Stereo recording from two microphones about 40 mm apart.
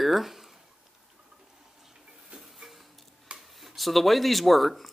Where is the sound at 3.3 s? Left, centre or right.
Right.